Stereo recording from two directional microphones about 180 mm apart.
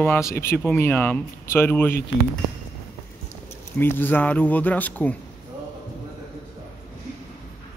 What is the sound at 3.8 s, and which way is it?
Speech, 10° left (ahead or behind).